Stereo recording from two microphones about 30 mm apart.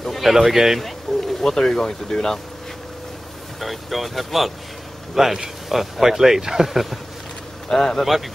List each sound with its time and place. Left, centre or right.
0.2 s a man's voice: centre
0.7 s speech: centre
3.5 s speech: centre
5.1 s a man's voice: centre
7.6 s speech: centre